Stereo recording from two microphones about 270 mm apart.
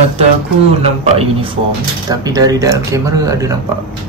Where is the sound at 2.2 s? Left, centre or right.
Centre.